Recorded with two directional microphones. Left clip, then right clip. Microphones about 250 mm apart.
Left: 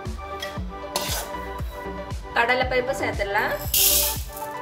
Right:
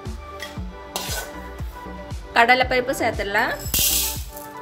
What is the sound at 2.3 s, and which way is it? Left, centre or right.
Speech, right.